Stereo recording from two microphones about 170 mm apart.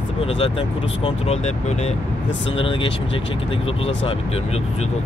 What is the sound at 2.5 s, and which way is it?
Speech, 30° left (ahead or behind).